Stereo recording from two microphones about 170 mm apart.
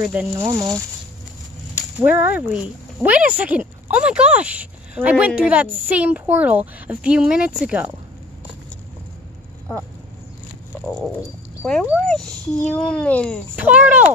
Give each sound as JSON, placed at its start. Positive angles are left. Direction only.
{"t": 0.0, "sound": "speech", "side_deg": -5}
{"t": 0.4, "sound": "speech", "side_deg": -20}
{"t": 2.0, "sound": "speech", "side_deg": -10}
{"t": 11.0, "sound": "speech", "side_deg": 0}
{"t": 13.6, "sound": "speech", "side_deg": -10}